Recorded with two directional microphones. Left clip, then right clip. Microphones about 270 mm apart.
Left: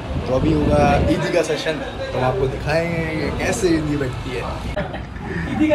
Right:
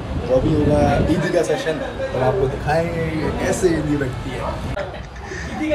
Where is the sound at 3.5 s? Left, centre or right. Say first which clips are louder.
Even; centre.